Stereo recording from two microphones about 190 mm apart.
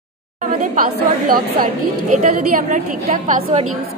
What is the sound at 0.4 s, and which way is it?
A woman's voice, 50° right (ahead or behind).